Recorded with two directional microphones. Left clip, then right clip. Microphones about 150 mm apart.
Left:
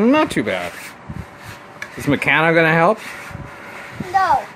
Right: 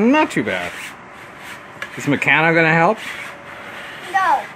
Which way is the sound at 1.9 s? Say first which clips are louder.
Right 1 dB; centre (ahead or behind).